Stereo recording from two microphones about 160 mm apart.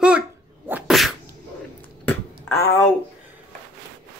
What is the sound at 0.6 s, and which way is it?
Sneeze, 10° right (ahead or behind).